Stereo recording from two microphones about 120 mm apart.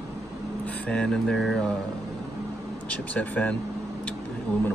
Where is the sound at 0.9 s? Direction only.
10° left (ahead or behind).